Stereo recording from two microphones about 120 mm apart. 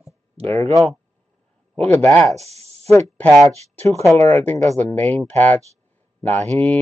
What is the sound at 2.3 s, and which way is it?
Spray, 60° right (ahead or behind).